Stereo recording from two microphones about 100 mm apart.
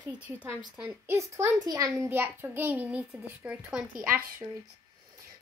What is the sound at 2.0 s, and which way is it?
A child's voice, 20° right (ahead or behind).